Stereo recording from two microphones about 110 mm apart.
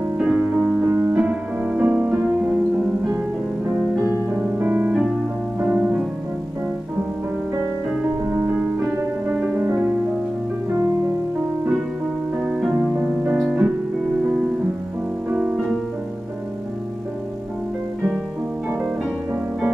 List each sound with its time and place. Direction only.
0.2 s music: 10° right (ahead or behind)
4.6 s keyboard: 15° right (ahead or behind)
5.6 s music: 15° right (ahead or behind)
8.0 s music: 15° right (ahead or behind)
12.4 s music: 15° right (ahead or behind)
15.2 s music: 15° right (ahead or behind)